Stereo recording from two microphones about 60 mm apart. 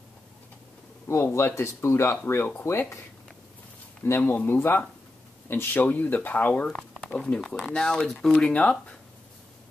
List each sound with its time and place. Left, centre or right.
1.0 s speech: left
4.0 s speech: left
6.8 s a sound: centre
7.2 s speech: centre